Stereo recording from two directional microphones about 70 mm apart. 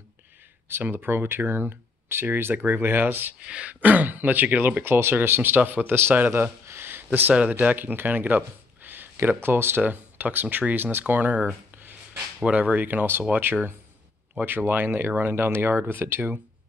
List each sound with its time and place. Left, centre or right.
0.7 s speech: right
3.4 s speech: centre
6.6 s a sound: right
7.3 s speech: right
12.4 s speech: right